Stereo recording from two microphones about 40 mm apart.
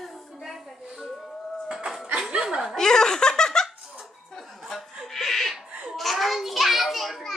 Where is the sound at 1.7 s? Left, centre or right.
Centre.